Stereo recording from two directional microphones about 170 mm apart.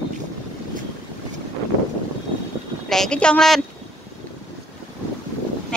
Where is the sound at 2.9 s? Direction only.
5° left (ahead or behind).